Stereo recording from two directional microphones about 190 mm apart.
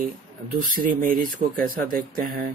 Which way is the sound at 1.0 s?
45° right (ahead or behind).